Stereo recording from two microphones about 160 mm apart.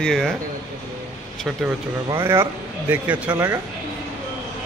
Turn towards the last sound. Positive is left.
turn(degrees=-15)  # may be behind; listen again after turning